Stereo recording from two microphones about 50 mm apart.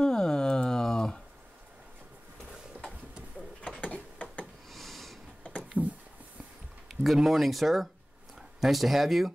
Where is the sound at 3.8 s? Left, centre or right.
Left.